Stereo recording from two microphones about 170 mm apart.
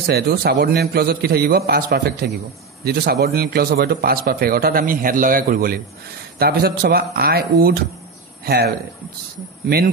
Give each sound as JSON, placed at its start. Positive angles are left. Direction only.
{"t": 0.0, "sound": "a man's voice", "side_deg": -70}